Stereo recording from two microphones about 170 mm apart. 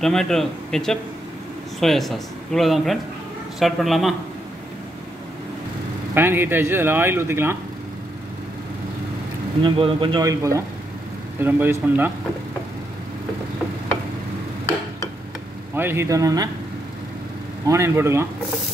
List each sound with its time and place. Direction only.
0.0 s speech: centre (ahead or behind)
6.1 s speech: 10° right (ahead or behind)
9.6 s speech: 30° right (ahead or behind)
10.2 s speech: 20° right (ahead or behind)
15.7 s speech: 15° right (ahead or behind)
17.6 s speech: 15° right (ahead or behind)